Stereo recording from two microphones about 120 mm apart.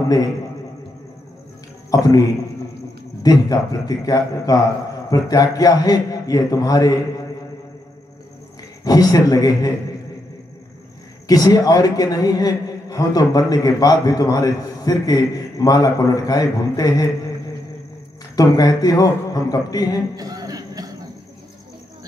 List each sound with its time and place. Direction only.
1.9 s a man's voice: 30° left (ahead or behind)
8.8 s a man's voice: 30° left (ahead or behind)
11.2 s a man's voice: 30° left (ahead or behind)
18.3 s a man's voice: 30° left (ahead or behind)
20.2 s a sound: 30° right (ahead or behind)